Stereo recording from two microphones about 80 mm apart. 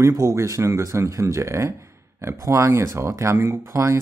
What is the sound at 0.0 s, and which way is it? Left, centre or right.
Speech, right.